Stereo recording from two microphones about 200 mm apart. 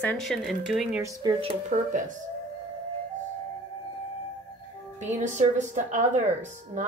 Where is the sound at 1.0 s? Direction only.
20° right (ahead or behind).